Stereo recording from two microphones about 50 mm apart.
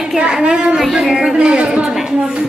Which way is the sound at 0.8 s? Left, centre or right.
Centre.